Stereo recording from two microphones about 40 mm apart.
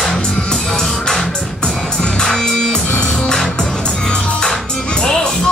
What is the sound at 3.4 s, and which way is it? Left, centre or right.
Music, centre.